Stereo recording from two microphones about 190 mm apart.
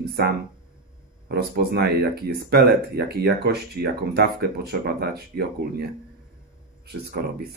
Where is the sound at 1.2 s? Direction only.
55° right (ahead or behind).